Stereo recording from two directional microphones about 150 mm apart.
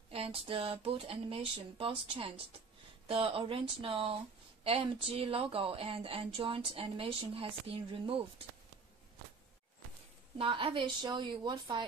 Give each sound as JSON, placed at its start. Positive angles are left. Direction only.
{"t": 0.1, "sound": "a woman's voice", "side_deg": -40}
{"t": 10.3, "sound": "a woman's voice", "side_deg": -35}